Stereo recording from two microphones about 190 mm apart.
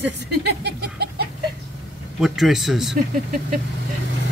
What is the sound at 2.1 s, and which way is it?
Speech, centre (ahead or behind).